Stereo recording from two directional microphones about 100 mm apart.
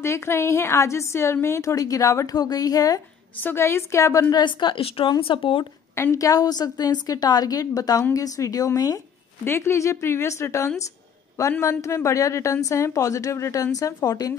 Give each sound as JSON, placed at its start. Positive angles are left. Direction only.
{"t": 0.0, "sound": "a woman's voice", "side_deg": 25}
{"t": 3.4, "sound": "a woman's voice", "side_deg": 25}
{"t": 6.1, "sound": "a woman's voice", "side_deg": 35}
{"t": 9.4, "sound": "a woman's voice", "side_deg": 25}